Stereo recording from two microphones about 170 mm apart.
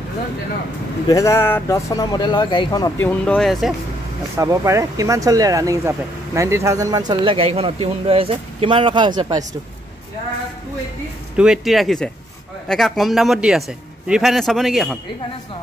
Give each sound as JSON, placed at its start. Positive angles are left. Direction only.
{"t": 1.0, "sound": "speech", "side_deg": 20}
{"t": 4.4, "sound": "speech", "side_deg": -20}
{"t": 11.3, "sound": "a man's voice", "side_deg": -5}